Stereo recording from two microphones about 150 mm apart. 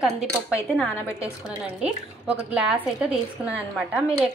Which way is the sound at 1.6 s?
5° right (ahead or behind).